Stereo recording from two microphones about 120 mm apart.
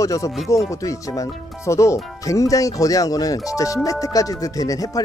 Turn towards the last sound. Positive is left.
turn(degrees=30)  # may be behind; listen again after turning